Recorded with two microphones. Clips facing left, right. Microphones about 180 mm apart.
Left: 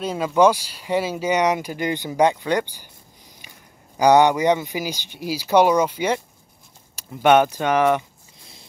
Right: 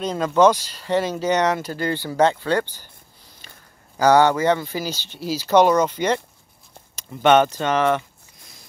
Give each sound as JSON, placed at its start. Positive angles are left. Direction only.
{"t": 0.0, "sound": "speech", "side_deg": 5}